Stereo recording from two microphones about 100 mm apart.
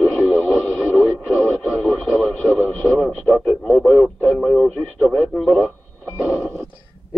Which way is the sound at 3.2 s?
Centre (ahead or behind).